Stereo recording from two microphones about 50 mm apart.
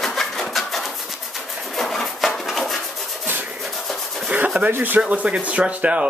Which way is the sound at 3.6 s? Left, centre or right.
Centre.